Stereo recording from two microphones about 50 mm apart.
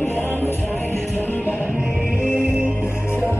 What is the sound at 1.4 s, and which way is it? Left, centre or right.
Music, right.